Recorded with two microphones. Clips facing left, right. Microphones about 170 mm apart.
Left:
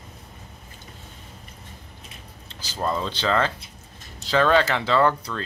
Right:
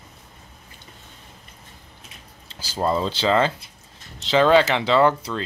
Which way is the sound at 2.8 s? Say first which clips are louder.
Right 4 dB; 30° right (ahead or behind).